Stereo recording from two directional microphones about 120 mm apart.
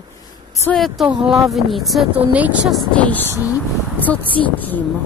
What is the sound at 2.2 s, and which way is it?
Speech, 15° right (ahead or behind).